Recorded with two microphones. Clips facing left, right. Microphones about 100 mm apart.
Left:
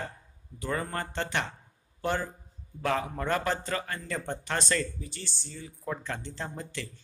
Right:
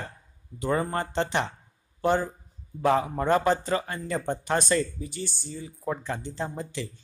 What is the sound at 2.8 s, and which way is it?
A man's voice, 20° right (ahead or behind).